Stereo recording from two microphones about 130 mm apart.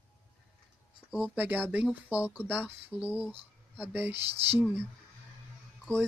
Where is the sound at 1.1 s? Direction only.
10° right (ahead or behind).